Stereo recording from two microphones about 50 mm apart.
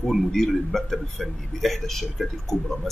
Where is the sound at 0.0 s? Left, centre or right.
Centre.